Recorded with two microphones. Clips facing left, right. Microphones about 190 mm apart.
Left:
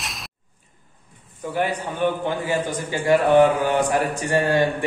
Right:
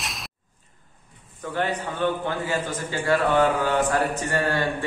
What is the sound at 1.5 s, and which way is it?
A man's voice, 10° left (ahead or behind).